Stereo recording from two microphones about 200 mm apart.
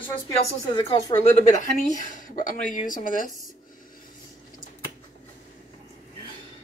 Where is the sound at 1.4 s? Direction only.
35° left (ahead or behind).